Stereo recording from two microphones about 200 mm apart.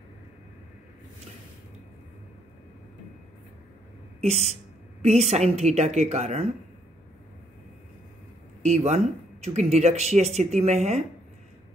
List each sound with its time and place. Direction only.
4.2 s speech: 30° right (ahead or behind)
8.6 s speech: 35° right (ahead or behind)